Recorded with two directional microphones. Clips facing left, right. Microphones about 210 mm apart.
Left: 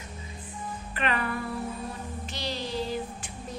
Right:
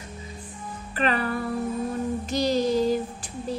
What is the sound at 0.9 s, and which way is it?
Music, 40° right (ahead or behind).